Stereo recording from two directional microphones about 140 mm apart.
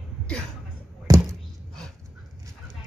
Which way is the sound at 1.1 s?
25° right (ahead or behind).